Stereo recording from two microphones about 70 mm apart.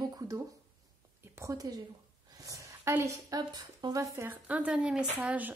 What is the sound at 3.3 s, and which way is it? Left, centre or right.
Speech, right.